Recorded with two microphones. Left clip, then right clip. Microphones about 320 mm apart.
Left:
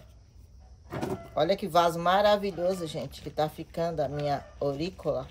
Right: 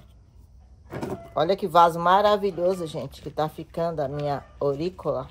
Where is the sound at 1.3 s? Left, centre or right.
Centre.